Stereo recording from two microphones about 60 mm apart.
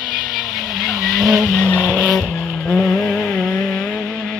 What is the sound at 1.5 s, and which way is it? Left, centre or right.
Vehicle, centre.